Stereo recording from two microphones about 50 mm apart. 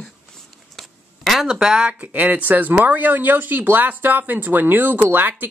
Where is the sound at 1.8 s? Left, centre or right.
Right.